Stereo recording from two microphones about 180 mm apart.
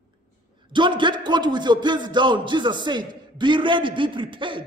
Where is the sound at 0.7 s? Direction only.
25° right (ahead or behind).